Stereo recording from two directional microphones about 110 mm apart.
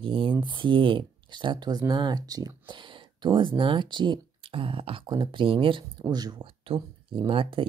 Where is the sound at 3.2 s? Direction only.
45° right (ahead or behind).